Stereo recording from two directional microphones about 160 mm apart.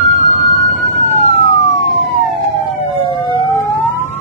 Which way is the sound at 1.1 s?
40° left (ahead or behind).